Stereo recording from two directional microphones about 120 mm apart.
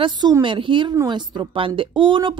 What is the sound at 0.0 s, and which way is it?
A woman's voice, 40° right (ahead or behind).